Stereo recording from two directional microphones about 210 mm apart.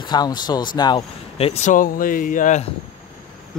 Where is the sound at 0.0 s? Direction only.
20° left (ahead or behind); by 2.6 s 40° left (ahead or behind).